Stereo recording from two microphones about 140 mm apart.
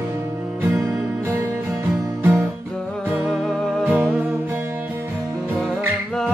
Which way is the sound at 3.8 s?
15° right (ahead or behind).